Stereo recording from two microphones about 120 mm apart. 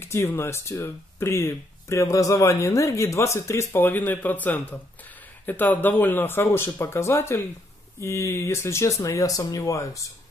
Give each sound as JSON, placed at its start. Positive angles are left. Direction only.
{"t": 0.0, "sound": "speech", "side_deg": 20}